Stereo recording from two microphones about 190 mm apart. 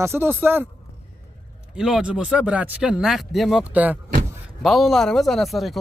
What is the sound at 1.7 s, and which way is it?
Speech, centre (ahead or behind).